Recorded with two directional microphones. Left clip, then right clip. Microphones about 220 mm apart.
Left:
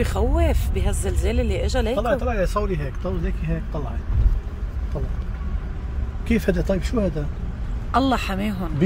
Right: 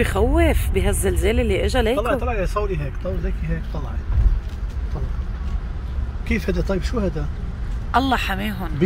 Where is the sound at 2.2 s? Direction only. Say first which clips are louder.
Left 1 dB; 35° left (ahead or behind).